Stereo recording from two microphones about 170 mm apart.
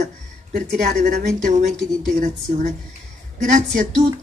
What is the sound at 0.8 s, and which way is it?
Speech, 50° right (ahead or behind).